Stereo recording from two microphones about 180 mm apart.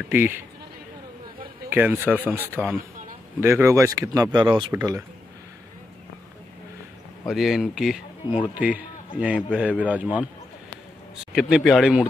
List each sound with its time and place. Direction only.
0.1 s a man's voice: 10° right (ahead or behind)
1.7 s a man's voice: 10° right (ahead or behind)
7.2 s a man's voice: centre (ahead or behind)